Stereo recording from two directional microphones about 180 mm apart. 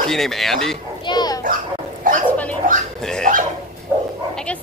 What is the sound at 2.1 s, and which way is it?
Bow-wow, 50° right (ahead or behind).